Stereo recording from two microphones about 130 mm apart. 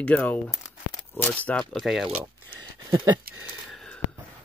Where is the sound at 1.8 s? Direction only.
Centre (ahead or behind).